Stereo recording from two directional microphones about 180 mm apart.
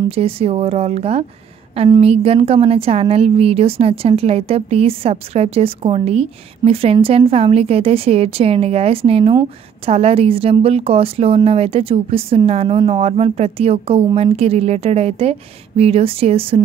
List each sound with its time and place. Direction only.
0.1 s a woman's voice: 35° right (ahead or behind)